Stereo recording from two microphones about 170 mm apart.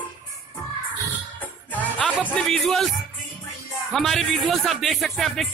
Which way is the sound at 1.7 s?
10° left (ahead or behind).